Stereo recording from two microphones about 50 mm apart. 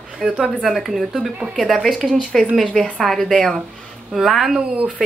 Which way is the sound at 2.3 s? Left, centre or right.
Centre.